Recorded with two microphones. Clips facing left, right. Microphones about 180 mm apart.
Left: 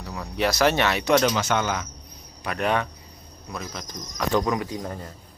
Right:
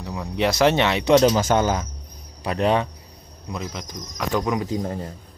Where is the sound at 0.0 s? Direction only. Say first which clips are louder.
Right 2 dB; 15° right (ahead or behind); by 1.9 s 40° right (ahead or behind).